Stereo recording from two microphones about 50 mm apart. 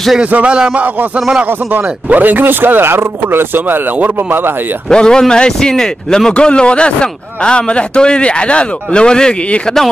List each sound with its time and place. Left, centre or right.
0.2 s speech: right
1.7 s speech: right
4.8 s a man's voice: centre